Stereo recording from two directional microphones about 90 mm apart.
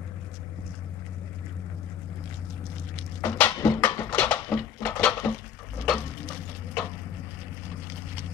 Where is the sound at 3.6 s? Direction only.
40° left (ahead or behind).